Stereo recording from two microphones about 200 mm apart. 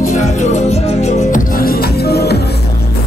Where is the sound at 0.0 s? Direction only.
35° left (ahead or behind).